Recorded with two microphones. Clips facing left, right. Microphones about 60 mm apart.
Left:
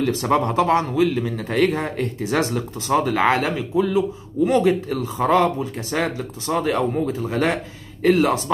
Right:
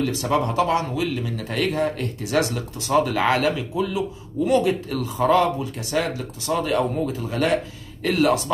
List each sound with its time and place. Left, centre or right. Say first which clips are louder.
0.0 s a man's voice: left 3 dB; left